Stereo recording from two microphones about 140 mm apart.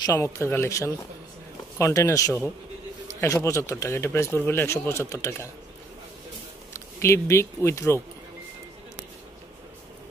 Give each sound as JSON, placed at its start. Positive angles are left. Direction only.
{"t": 0.0, "sound": "speech", "side_deg": 25}
{"t": 6.7, "sound": "speech", "side_deg": 20}